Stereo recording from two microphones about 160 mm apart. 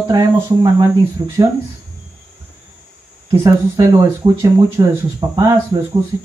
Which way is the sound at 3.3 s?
30° right (ahead or behind).